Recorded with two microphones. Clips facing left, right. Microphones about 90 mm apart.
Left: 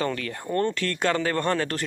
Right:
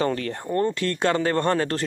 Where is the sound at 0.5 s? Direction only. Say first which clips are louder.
Right 2 dB; 20° right (ahead or behind).